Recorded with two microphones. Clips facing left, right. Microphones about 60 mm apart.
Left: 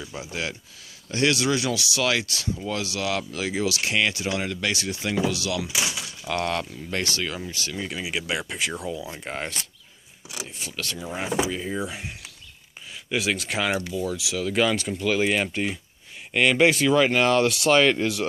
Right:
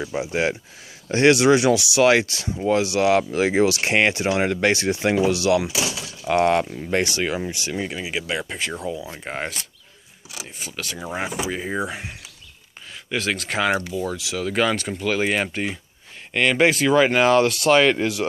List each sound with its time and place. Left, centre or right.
0.0 s speech: right
7.9 s speech: centre
10.6 s speech: centre
11.0 s speech: right
13.1 s speech: centre
14.1 s speech: centre
14.4 s speech: centre